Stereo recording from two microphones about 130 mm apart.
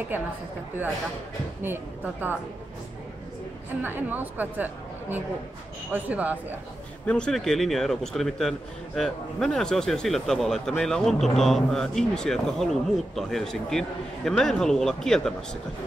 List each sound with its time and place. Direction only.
1.6 s a woman's voice: 15° right (ahead or behind)
3.8 s a woman's voice: 15° right (ahead or behind)
5.9 s a woman's voice: 10° right (ahead or behind)
7.1 s speech: 5° left (ahead or behind)